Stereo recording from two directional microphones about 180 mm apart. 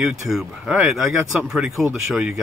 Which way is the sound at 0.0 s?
5° right (ahead or behind).